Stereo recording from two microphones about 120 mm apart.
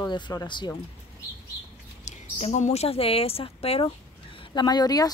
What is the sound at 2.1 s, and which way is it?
A woman's voice, 70° left (ahead or behind).